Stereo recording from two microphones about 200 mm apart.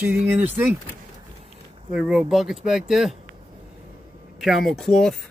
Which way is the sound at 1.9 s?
5° right (ahead or behind).